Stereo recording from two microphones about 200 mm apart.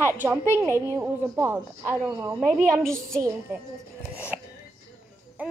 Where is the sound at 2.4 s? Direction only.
5° left (ahead or behind).